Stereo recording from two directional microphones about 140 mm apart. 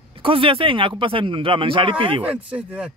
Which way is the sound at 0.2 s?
40° right (ahead or behind).